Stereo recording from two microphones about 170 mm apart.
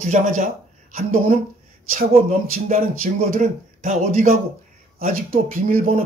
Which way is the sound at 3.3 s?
45° right (ahead or behind).